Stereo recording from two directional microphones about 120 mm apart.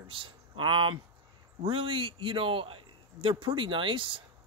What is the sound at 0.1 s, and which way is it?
Speech, 45° right (ahead or behind).